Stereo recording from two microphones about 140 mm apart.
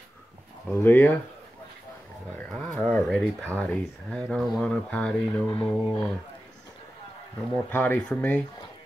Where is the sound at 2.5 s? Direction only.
5° left (ahead or behind).